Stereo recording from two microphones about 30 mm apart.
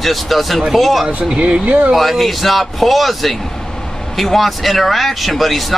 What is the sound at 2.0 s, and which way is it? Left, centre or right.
Speech, centre.